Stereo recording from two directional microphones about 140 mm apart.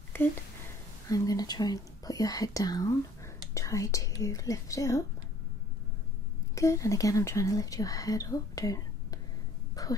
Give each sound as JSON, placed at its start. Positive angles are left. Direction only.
{"t": 0.1, "sound": "speech", "side_deg": 15}
{"t": 1.0, "sound": "speech", "side_deg": 25}
{"t": 6.5, "sound": "speech", "side_deg": 20}
{"t": 9.8, "sound": "a sound", "side_deg": 25}